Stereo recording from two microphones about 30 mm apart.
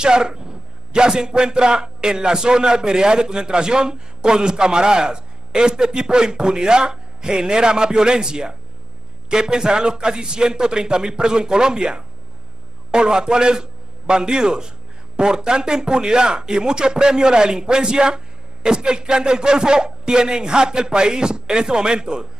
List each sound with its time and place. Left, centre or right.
0.0 s a man's voice: right